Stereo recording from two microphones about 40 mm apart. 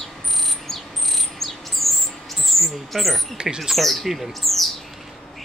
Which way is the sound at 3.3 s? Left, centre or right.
Centre.